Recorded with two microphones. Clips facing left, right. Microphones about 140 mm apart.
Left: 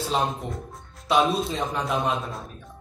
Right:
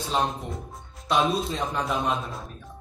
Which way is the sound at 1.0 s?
Centre (ahead or behind).